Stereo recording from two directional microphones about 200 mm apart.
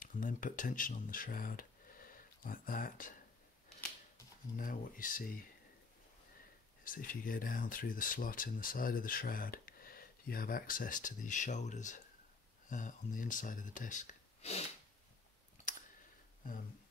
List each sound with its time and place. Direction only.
0.0 s speech: 40° left (ahead or behind)
4.6 s speech: 45° left (ahead or behind)
6.8 s speech: 45° left (ahead or behind)